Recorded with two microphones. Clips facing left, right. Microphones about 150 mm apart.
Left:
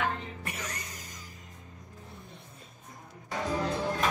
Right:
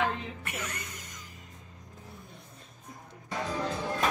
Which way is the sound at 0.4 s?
35° left (ahead or behind).